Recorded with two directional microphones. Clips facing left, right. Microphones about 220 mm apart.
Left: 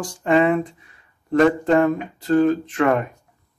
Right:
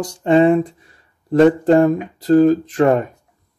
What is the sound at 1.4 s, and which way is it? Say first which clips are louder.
Speech: right 5 dB; 30° right (ahead or behind).